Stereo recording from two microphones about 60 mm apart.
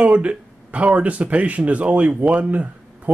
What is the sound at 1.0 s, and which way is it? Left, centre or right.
Speech, right.